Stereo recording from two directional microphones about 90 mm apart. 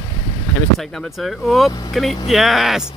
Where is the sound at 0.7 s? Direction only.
Centre (ahead or behind).